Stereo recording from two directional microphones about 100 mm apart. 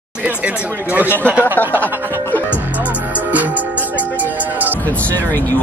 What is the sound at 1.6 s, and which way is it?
Speech, 20° left (ahead or behind).